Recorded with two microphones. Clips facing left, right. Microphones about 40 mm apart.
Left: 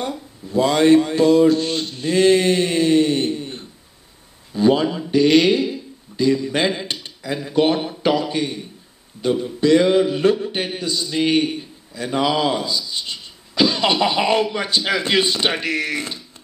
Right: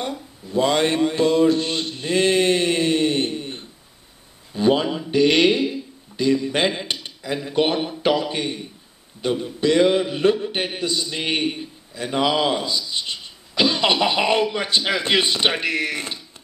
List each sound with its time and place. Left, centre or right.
0.5 s speech: right
1.5 s a sound: right
4.6 s speech: right
5.1 s a sound: right
6.4 s speech: right
9.6 s a man's voice: right